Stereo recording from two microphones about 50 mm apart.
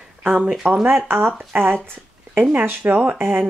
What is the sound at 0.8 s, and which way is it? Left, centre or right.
Speech, right.